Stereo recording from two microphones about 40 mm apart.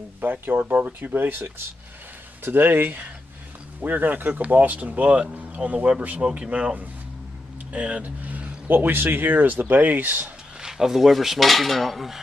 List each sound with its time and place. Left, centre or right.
0.2 s speech: right
7.7 s speech: right
8.6 s speech: right
10.6 s cutlery: centre